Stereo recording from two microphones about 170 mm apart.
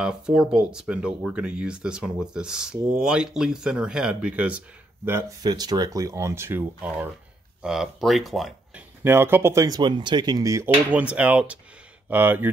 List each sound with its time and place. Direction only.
0.0 s speech: 5° right (ahead or behind)
5.4 s speech: 25° right (ahead or behind)
7.6 s speech: 5° right (ahead or behind)
9.0 s speech: 15° right (ahead or behind)
10.9 s speech: 10° right (ahead or behind)